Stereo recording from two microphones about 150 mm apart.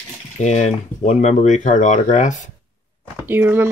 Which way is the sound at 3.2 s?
15° right (ahead or behind).